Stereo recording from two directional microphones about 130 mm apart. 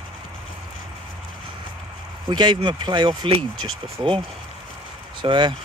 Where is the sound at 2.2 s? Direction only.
35° right (ahead or behind).